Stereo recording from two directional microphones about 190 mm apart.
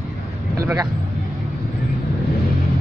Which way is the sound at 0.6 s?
15° right (ahead or behind).